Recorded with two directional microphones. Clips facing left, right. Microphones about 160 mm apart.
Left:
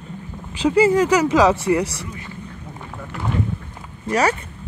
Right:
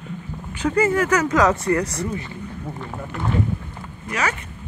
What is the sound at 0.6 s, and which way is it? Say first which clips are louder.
Speech: left 4 dB; 15° left (ahead or behind).